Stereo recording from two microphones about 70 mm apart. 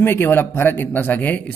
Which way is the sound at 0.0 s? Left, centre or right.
Left.